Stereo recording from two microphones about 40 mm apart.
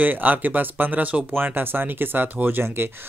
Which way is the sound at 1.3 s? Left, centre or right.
Right.